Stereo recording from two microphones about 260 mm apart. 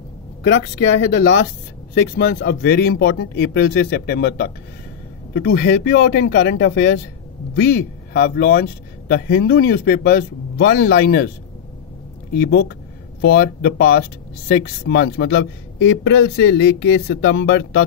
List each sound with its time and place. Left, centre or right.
0.5 s a man's voice: left
12.4 s a man's voice: left